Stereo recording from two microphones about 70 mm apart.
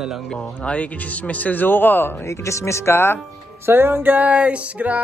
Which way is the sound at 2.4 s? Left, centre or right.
Left.